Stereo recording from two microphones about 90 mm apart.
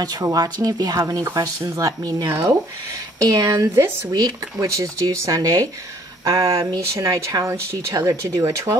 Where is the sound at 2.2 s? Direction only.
30° right (ahead or behind).